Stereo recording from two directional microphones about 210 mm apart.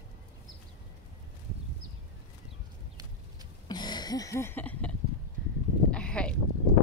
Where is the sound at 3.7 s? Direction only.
20° left (ahead or behind).